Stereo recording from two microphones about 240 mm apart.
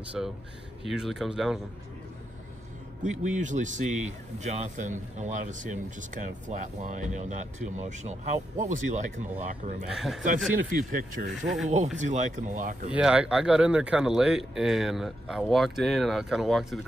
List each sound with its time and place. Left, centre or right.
0.2 s speech: centre
3.0 s speech: right
9.8 s speech: centre
10.9 s speech: right
11.2 s speech: centre
11.7 s speech: right
12.9 s speech: centre